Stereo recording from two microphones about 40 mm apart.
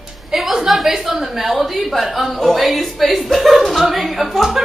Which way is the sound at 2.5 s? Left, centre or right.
Centre.